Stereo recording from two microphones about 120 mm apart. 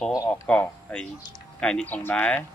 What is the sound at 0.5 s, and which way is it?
Speech, 10° left (ahead or behind).